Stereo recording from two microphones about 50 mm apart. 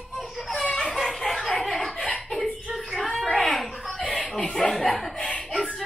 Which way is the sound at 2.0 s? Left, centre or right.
Left.